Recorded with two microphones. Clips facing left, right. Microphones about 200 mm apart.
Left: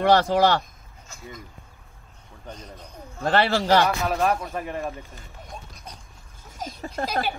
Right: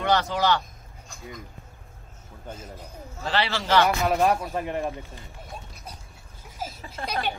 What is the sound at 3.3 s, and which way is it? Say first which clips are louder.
Speech: left 6 dB; 50° left (ahead or behind).